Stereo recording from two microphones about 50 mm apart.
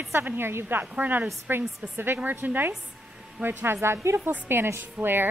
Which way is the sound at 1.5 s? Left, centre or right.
Right.